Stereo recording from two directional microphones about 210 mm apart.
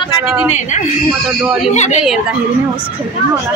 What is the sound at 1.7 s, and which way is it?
Speech, 35° left (ahead or behind).